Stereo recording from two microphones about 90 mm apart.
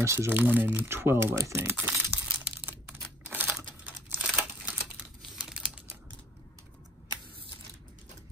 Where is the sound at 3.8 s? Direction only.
15° right (ahead or behind).